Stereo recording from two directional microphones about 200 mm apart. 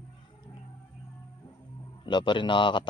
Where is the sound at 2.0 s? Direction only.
25° left (ahead or behind).